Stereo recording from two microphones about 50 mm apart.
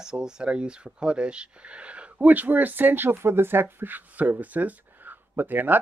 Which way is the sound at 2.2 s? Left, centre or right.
Right.